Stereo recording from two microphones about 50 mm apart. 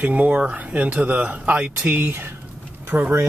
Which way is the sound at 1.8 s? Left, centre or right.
Right.